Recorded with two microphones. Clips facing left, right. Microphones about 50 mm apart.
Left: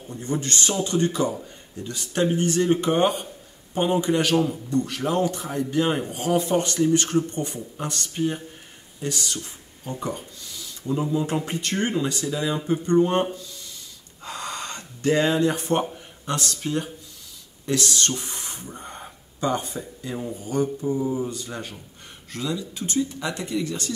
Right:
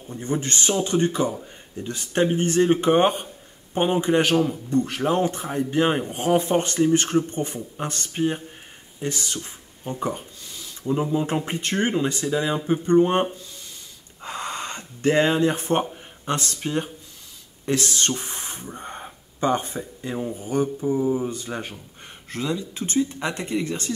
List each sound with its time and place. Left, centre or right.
0.1 s speech: right
18.7 s a sound: right
19.4 s speech: right
20.2 s speech: centre